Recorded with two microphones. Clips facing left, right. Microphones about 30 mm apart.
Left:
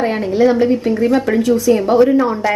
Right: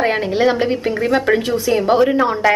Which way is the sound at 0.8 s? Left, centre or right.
Right.